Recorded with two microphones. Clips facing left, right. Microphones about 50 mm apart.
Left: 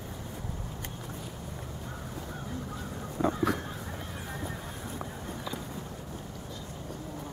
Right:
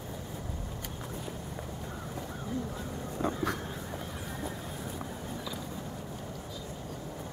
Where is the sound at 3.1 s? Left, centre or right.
Centre.